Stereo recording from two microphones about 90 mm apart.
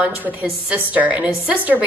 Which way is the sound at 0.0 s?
15° right (ahead or behind).